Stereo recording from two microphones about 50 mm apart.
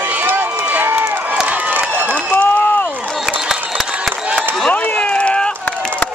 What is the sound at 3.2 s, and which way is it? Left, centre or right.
Crowd, centre.